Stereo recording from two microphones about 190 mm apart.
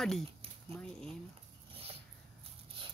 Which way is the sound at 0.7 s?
5° left (ahead or behind).